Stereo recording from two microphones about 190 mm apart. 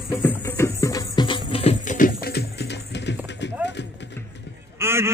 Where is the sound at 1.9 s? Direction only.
50° left (ahead or behind); by 4.1 s 65° left (ahead or behind).